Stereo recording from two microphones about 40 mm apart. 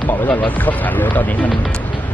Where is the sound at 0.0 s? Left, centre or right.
Left.